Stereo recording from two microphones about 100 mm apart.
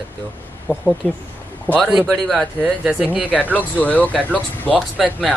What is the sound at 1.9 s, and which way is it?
Speech, centre (ahead or behind).